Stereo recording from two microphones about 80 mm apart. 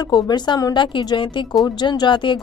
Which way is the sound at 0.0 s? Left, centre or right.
Left.